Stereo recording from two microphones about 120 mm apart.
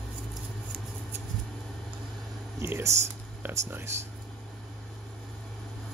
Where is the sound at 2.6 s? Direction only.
20° right (ahead or behind).